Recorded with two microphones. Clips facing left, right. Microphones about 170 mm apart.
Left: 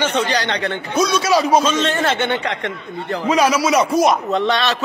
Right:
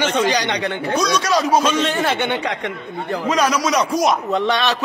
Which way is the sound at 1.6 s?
10° right (ahead or behind).